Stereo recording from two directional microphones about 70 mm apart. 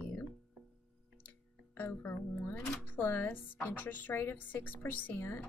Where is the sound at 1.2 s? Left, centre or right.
Left.